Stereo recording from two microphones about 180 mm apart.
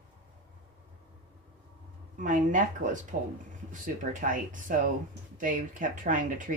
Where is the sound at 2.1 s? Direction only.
45° right (ahead or behind).